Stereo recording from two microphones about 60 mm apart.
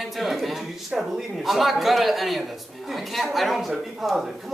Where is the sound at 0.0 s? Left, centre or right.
Centre.